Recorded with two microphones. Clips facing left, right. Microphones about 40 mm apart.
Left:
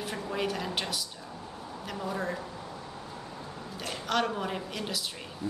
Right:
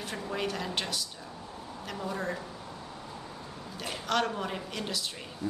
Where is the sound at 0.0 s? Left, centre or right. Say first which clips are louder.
Left 1 dB; centre.